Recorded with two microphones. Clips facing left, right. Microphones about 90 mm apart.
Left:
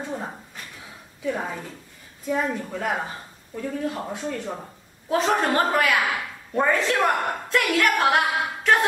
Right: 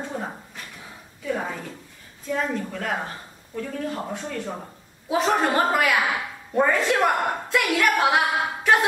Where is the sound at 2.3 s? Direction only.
10° left (ahead or behind).